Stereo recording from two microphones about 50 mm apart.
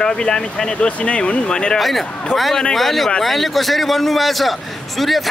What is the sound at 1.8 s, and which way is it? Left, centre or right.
A man's voice, centre.